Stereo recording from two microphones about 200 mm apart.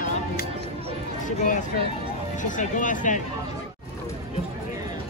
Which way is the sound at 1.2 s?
40° left (ahead or behind).